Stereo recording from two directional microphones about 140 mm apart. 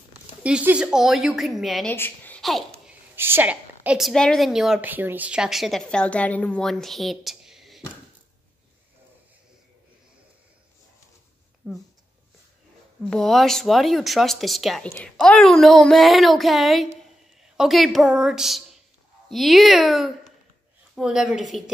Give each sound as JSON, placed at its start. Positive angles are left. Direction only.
{"t": 0.4, "sound": "a woman's voice", "side_deg": -10}
{"t": 1.9, "sound": "a woman's voice", "side_deg": 15}
{"t": 3.2, "sound": "a woman's voice", "side_deg": -15}
{"t": 4.1, "sound": "a woman's voice", "side_deg": 5}
{"t": 11.6, "sound": "a sound", "side_deg": -10}
{"t": 13.1, "sound": "a woman's voice", "side_deg": 0}